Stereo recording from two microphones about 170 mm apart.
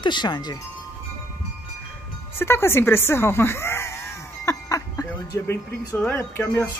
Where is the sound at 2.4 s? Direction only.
15° left (ahead or behind).